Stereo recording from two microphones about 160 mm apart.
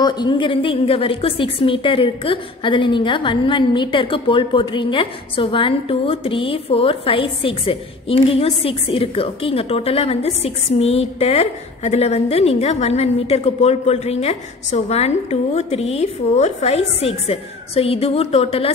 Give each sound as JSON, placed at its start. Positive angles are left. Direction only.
{"t": 0.0, "sound": "a woman's voice", "side_deg": 25}